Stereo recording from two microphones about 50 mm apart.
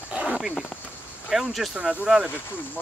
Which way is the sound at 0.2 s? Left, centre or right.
Centre.